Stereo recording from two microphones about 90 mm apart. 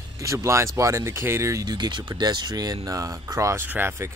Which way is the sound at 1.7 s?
55° right (ahead or behind).